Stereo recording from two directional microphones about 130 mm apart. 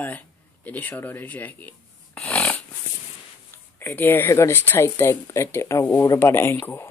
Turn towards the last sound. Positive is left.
turn(degrees=20)  # may be behind; listen again after turning